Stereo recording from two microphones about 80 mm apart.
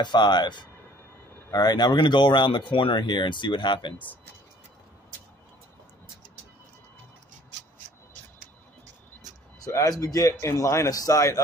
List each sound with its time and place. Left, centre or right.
0.0 s speech: left
9.7 s a man's voice: left